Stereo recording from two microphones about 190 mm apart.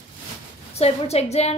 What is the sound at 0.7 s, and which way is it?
Speech, 35° left (ahead or behind).